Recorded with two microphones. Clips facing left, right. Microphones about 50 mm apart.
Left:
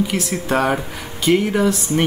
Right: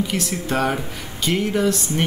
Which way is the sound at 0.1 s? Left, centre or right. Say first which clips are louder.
Left 3 dB; centre.